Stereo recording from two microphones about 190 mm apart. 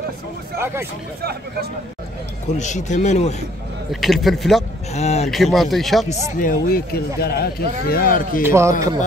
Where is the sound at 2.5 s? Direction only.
40° left (ahead or behind).